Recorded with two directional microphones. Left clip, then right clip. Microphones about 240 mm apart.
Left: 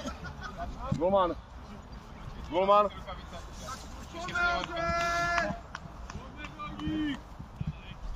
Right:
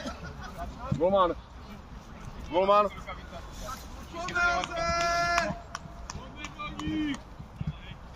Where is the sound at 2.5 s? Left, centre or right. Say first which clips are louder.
Right 1 dB; right.